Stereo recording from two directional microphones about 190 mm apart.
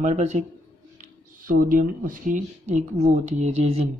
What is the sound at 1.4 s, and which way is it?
Speech, 45° right (ahead or behind).